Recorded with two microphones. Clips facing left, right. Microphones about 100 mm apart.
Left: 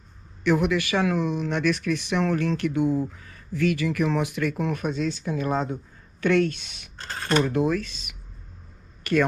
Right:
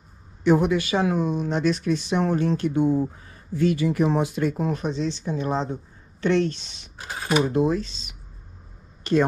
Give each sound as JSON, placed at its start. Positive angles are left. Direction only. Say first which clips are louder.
{"t": 0.4, "sound": "a man's voice", "louder": "right 3 dB", "side_deg": -25}
{"t": 7.0, "sound": "a sound", "louder": "right 1 dB", "side_deg": -10}
{"t": 7.5, "sound": "speech", "louder": "right 2 dB", "side_deg": -25}